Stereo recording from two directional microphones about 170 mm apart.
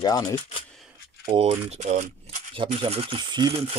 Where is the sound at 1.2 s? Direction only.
30° right (ahead or behind).